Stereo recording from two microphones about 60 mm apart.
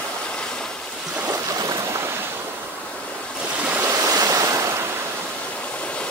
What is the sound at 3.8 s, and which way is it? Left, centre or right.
Waves, right.